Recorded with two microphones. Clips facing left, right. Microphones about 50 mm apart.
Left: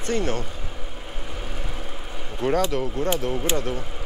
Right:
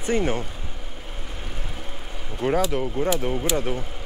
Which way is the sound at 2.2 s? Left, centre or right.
Centre.